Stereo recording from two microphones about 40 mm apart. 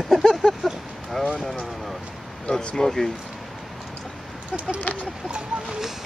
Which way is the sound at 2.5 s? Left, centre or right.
Left.